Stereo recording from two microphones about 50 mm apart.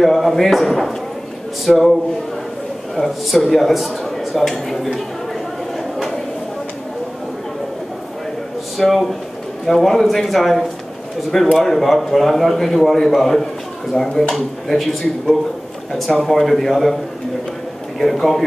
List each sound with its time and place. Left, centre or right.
0.0 s a man's voice: centre
3.0 s a man's voice: centre
5.9 s a sound: centre
8.7 s a man's voice: centre